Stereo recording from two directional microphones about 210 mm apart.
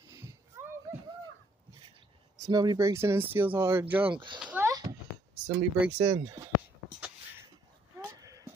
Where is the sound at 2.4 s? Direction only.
20° right (ahead or behind).